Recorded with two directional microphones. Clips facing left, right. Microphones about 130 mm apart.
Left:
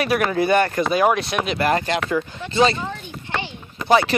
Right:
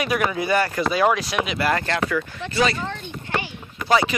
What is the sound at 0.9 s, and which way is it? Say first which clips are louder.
Speech: left 1 dB; 20° left (ahead or behind).